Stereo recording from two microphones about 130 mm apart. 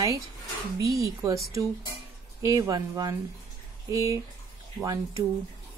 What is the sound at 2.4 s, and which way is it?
Speech, 25° right (ahead or behind).